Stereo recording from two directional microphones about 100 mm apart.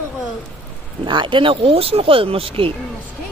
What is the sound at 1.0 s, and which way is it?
Speech, 50° right (ahead or behind).